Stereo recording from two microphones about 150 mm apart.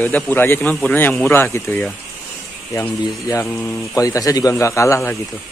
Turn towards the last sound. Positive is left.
turn(degrees=15)  # may be behind; listen again after turning